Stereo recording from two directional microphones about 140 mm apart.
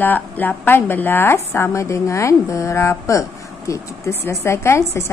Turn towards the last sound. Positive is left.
turn(degrees=20)  # may be behind; listen again after turning